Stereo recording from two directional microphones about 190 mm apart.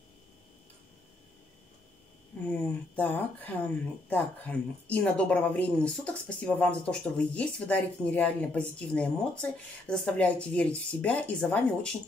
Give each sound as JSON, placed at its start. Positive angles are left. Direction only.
{"t": 2.5, "sound": "speech", "side_deg": 5}